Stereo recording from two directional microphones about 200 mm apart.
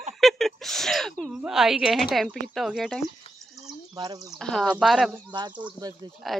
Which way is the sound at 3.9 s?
20° right (ahead or behind).